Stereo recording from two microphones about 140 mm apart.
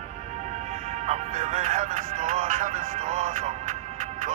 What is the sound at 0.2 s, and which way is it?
Speech, 55° right (ahead or behind).